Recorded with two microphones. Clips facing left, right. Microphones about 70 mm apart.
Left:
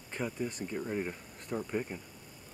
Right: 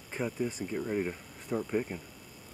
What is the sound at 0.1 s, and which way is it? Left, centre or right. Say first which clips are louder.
Speech: right 3 dB; centre.